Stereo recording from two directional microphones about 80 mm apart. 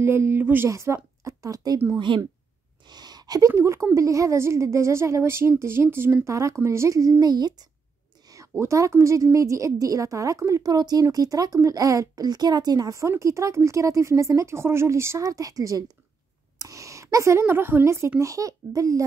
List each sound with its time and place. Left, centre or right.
0.0 s speech: right
0.7 s a woman's voice: right
2.0 s a woman's voice: right
2.9 s a woman's voice: right
6.2 s a woman's voice: right
8.3 s a woman's voice: right